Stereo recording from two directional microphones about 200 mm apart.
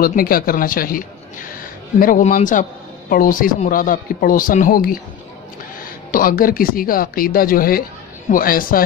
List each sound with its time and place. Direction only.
0.0 s a man's voice: 45° left (ahead or behind)
6.1 s speech: 45° left (ahead or behind)